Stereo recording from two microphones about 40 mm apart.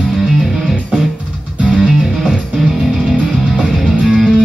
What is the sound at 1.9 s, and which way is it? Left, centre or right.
Music, centre.